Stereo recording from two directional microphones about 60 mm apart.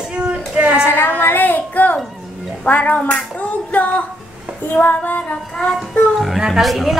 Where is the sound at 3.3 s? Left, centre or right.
Left.